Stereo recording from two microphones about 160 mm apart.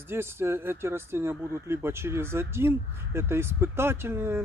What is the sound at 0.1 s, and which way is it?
Speech, 15° right (ahead or behind).